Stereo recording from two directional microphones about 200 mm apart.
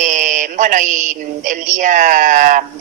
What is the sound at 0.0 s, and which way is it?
Speech, 40° right (ahead or behind).